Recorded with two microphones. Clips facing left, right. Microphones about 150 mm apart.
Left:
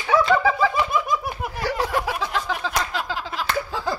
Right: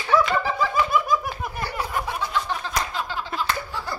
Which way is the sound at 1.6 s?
90° left.